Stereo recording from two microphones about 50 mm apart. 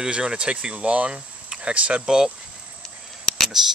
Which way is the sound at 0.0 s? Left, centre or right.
Centre.